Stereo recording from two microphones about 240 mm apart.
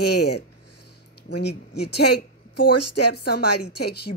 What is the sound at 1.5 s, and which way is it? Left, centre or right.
Speech, left.